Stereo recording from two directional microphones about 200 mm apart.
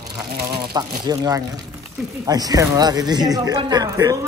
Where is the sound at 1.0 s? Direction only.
20° right (ahead or behind).